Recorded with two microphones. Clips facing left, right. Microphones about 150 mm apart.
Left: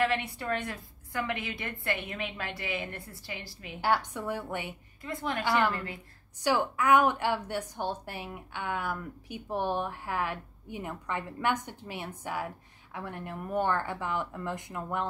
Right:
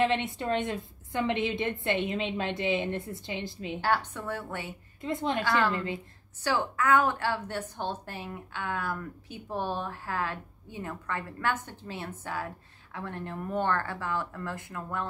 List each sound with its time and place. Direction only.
0.0 s a woman's voice: 20° right (ahead or behind)
3.8 s a woman's voice: 10° left (ahead or behind)
5.0 s a woman's voice: 20° right (ahead or behind)
5.4 s a woman's voice: 20° left (ahead or behind)
5.7 s a woman's voice: 20° right (ahead or behind)
6.4 s a woman's voice: 15° left (ahead or behind)